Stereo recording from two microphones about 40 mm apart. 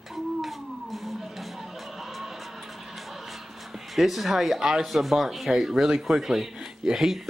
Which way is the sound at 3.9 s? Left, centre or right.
Centre.